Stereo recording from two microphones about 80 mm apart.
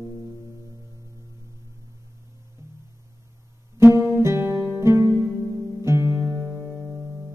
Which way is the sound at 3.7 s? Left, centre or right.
Right.